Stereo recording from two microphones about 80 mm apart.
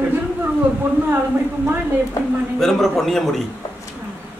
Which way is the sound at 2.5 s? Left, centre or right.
Centre.